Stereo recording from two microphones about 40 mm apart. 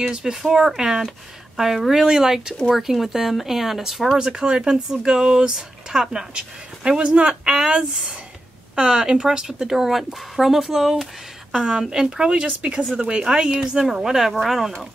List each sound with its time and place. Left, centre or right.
0.2 s speech: centre
4.2 s speech: centre
6.3 s speech: right
9.7 s speech: centre